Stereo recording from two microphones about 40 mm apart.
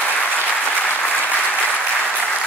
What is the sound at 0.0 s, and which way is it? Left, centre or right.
Applause, left.